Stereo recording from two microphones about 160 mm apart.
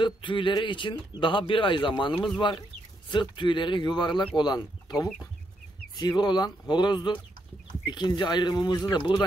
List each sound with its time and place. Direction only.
0.0 s speech: 30° left (ahead or behind)